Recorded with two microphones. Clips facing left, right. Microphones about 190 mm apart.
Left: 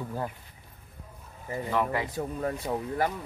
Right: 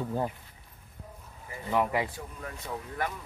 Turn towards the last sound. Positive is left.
turn(degrees=35)  # may be behind; listen again after turning